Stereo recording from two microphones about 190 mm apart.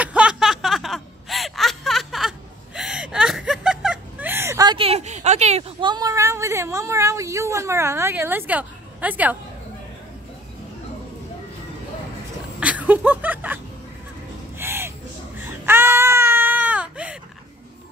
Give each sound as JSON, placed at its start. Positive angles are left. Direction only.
{"t": 0.0, "sound": "a sound", "side_deg": -5}
{"t": 12.5, "sound": "chuckle", "side_deg": -5}
{"t": 14.6, "sound": "gasp", "side_deg": -10}
{"t": 15.3, "sound": "baby cry", "side_deg": -10}